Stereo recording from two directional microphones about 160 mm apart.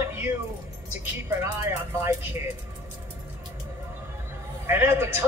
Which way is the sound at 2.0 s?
15° right (ahead or behind).